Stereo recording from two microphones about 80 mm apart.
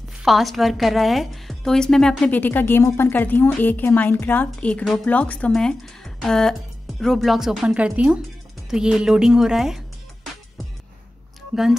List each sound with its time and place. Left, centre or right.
0.2 s a woman's voice: centre
2.3 s a woman's voice: left
5.5 s speech: centre
7.7 s a woman's voice: centre